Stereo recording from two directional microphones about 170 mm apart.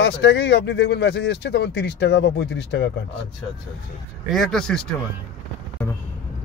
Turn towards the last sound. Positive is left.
turn(degrees=5)  # may be behind; listen again after turning